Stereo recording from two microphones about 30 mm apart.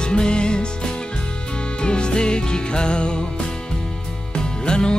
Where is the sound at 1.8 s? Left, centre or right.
Left.